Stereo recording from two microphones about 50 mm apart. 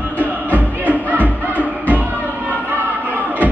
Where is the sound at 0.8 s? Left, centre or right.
Right.